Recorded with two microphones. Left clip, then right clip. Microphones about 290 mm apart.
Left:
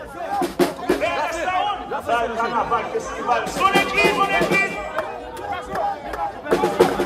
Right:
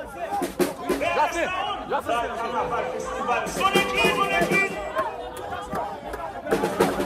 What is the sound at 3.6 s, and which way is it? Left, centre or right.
Music, left.